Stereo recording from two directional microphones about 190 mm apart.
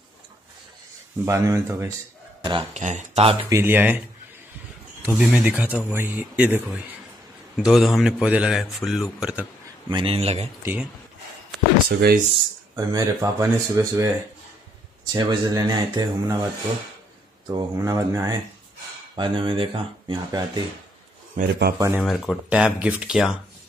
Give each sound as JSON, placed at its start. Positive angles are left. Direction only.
{"t": 1.2, "sound": "speech", "side_deg": -15}
{"t": 2.7, "sound": "speech", "side_deg": -40}
{"t": 3.4, "sound": "speech", "side_deg": -10}
{"t": 5.0, "sound": "a man's voice", "side_deg": -5}
{"t": 9.8, "sound": "speech", "side_deg": -25}
{"t": 10.6, "sound": "speech", "side_deg": -10}
{"t": 11.9, "sound": "a man's voice", "side_deg": -50}
{"t": 12.7, "sound": "speech", "side_deg": -20}
{"t": 15.1, "sound": "speech", "side_deg": -20}
{"t": 17.5, "sound": "speech", "side_deg": -20}
{"t": 21.4, "sound": "a man's voice", "side_deg": -55}
{"t": 21.7, "sound": "speech", "side_deg": -15}
{"t": 22.0, "sound": "a man's voice", "side_deg": 0}